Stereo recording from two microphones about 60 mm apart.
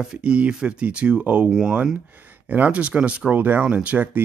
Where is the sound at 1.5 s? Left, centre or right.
Centre.